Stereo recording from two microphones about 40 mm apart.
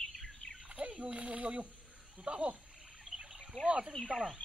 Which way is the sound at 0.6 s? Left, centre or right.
Right.